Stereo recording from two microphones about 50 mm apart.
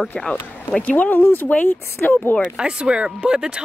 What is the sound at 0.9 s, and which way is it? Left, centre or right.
Speech, left.